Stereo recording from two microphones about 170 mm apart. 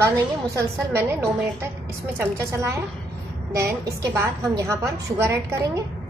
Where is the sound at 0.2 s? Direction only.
15° right (ahead or behind).